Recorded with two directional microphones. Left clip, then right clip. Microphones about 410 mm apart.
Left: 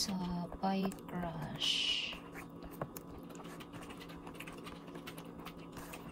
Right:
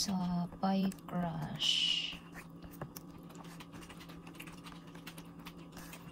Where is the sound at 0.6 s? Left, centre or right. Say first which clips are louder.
Right 1 dB; centre.